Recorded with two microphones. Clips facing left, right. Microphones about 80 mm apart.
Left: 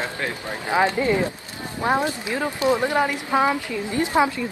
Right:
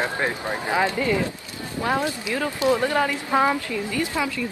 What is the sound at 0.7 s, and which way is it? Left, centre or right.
Speech, left.